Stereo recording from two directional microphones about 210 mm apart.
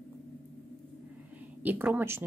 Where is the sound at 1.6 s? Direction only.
10° right (ahead or behind).